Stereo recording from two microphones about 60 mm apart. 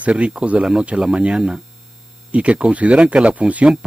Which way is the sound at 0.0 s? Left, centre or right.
Centre.